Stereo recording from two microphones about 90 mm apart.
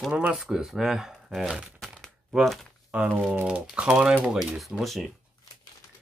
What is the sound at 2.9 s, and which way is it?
Speech, 10° right (ahead or behind).